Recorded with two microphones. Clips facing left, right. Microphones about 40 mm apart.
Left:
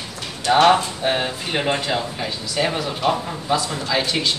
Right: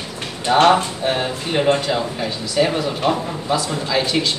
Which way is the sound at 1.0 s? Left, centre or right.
Centre.